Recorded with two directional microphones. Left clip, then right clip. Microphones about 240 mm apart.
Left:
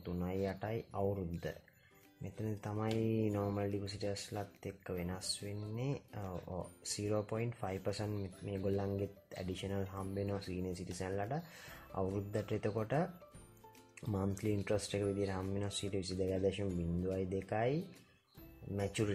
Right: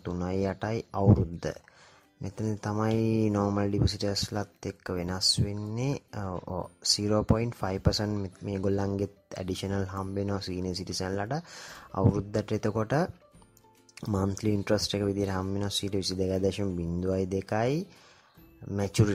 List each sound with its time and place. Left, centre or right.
0.0 s speech: right